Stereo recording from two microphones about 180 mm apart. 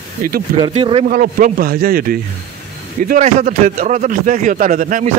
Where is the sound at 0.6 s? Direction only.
30° right (ahead or behind).